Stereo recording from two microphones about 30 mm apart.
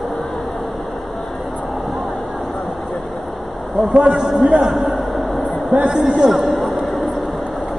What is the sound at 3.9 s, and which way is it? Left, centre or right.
Speech, right.